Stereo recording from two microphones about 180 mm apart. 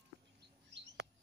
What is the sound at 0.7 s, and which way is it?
Bird, 80° right.